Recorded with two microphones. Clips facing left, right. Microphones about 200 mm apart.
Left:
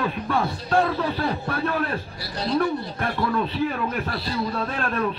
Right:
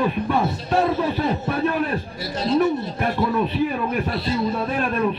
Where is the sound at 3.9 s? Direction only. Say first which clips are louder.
Right 4 dB; 20° right (ahead or behind).